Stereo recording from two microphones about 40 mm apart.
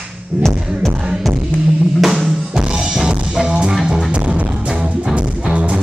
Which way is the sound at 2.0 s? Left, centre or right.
Centre.